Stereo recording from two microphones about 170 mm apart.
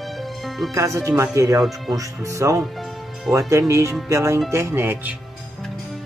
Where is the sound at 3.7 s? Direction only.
15° right (ahead or behind).